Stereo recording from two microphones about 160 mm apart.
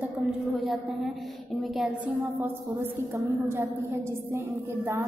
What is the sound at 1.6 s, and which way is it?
Speech, centre (ahead or behind).